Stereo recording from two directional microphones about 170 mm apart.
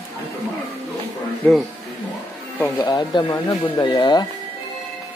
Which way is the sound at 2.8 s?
25° left (ahead or behind).